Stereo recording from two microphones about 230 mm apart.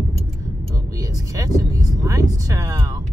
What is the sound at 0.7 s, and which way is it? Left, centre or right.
Speech, centre.